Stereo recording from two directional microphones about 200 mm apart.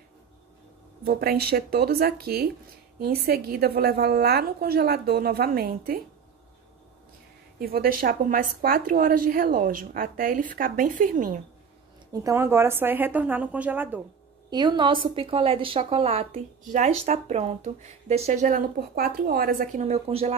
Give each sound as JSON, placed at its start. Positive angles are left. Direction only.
{"t": 1.0, "sound": "a woman's voice", "side_deg": -50}
{"t": 7.5, "sound": "a woman's voice", "side_deg": -50}
{"t": 12.1, "sound": "a woman's voice", "side_deg": -15}
{"t": 14.5, "sound": "a woman's voice", "side_deg": -20}
{"t": 19.9, "sound": "a woman's voice", "side_deg": -30}